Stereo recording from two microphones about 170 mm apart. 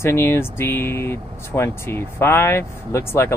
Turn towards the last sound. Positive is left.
turn(degrees=15)  # may be behind; listen again after turning